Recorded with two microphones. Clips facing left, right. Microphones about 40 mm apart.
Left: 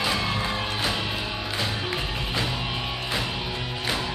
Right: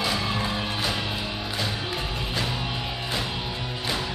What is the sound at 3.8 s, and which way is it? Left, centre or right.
Music, left.